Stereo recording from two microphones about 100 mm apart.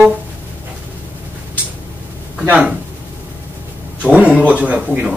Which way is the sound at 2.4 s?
15° right (ahead or behind).